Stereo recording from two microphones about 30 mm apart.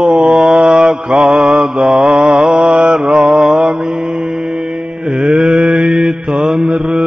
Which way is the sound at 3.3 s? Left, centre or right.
Centre.